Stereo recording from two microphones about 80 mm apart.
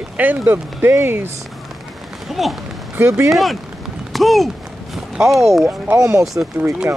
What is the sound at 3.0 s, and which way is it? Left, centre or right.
Speech, right.